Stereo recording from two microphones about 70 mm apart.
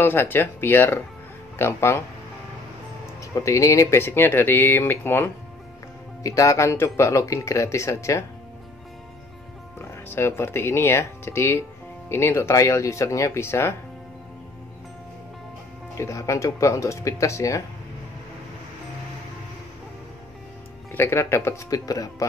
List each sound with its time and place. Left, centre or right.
0.0 s speech: left
3.3 s speech: left
6.2 s speech: left
9.8 s speech: left
16.0 s speech: left
20.9 s speech: left
21.6 s speech: left